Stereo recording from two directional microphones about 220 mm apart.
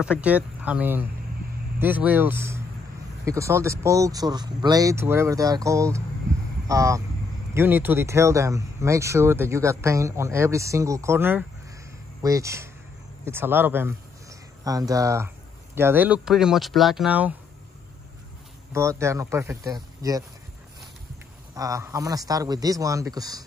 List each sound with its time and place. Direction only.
0.0 s speech: 5° right (ahead or behind)
18.7 s speech: 15° right (ahead or behind)
21.5 s speech: 15° right (ahead or behind)